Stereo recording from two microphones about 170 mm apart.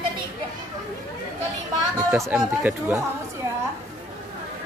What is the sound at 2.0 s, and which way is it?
Chatter, 15° right (ahead or behind).